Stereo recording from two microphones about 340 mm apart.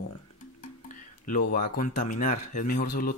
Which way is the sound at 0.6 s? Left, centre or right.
Left.